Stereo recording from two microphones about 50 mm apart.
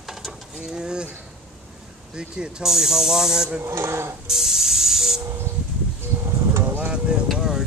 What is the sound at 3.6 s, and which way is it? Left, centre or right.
Speech, right.